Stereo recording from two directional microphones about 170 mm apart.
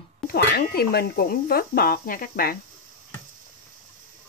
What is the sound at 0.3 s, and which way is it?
Speech, 65° left (ahead or behind).